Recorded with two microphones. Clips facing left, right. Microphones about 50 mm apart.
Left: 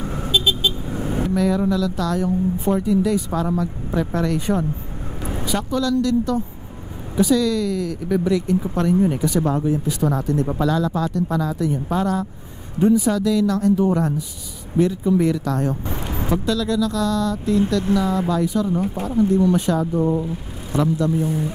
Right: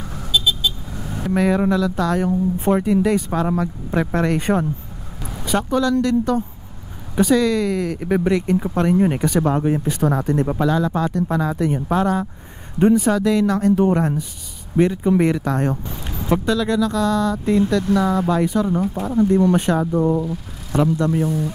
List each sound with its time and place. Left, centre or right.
0.0 s vehicle: left
1.3 s speech: right
10.5 s speech: right
12.7 s speech: right
15.9 s vehicle: left
16.4 s speech: right
20.0 s speech: right